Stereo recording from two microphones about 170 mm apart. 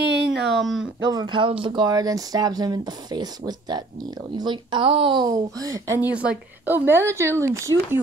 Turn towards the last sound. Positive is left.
turn(degrees=-15)  # may be behind; listen again after turning